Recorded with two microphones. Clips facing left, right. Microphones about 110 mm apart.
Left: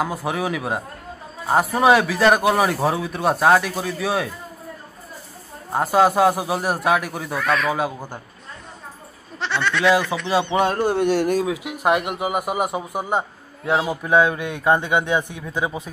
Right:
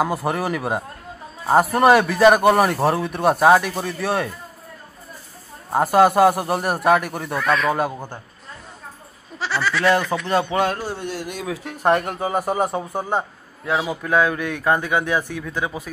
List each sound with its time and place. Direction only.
0.0 s a man's voice: centre (ahead or behind)
5.7 s a man's voice: centre (ahead or behind)
9.4 s speech: centre (ahead or behind)
10.8 s a sound: 65° left (ahead or behind)
11.4 s speech: 15° left (ahead or behind)